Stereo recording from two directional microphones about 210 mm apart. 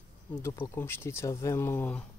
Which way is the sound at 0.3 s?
10° left (ahead or behind).